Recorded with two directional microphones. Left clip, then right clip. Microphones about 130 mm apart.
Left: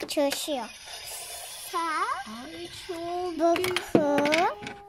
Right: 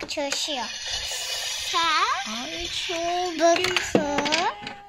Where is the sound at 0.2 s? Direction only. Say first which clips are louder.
Left 4 dB; 90° left.